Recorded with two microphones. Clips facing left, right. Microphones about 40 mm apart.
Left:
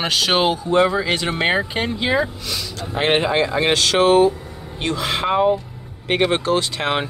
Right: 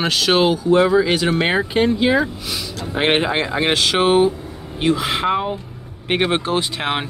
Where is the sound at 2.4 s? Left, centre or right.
Centre.